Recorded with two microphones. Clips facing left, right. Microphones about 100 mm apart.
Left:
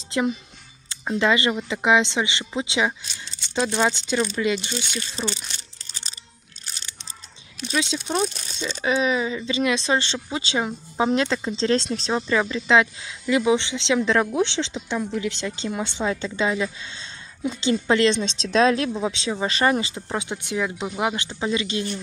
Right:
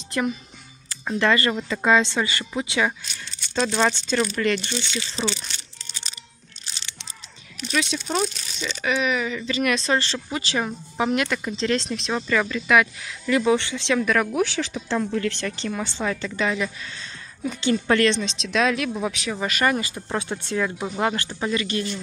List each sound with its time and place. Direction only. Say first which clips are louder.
1.0 s speech: even; 20° left (ahead or behind)
5.2 s speech: right 2 dB; 5° right (ahead or behind)
7.6 s speech: even; 20° left (ahead or behind)
12.3 s speech: even; 20° left (ahead or behind)
14.9 s speech: right 5 dB; 5° left (ahead or behind)
15.2 s speech: right 1 dB; 20° left (ahead or behind)